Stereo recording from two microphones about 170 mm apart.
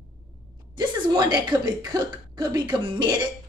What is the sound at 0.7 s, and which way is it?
Speech, 25° right (ahead or behind).